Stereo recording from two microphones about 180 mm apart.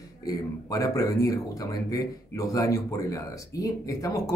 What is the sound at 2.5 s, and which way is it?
Speech, 20° left (ahead or behind).